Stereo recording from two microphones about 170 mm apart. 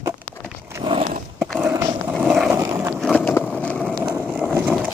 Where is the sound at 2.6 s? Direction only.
15° right (ahead or behind).